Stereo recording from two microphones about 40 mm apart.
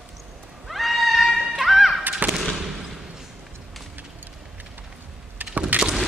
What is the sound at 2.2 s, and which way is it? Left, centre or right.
Fireworks, right.